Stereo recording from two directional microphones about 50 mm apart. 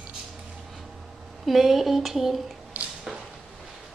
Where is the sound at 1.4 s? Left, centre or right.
Centre.